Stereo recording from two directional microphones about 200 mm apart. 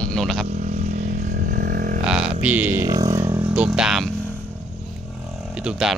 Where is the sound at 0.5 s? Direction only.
35° right (ahead or behind).